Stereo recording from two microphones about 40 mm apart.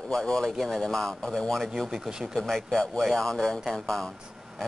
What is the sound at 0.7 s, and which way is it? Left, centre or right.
Speech, centre.